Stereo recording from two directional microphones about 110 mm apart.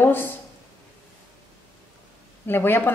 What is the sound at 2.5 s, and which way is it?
Speech, 20° left (ahead or behind).